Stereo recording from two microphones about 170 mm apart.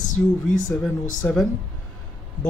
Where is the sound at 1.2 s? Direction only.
10° left (ahead or behind).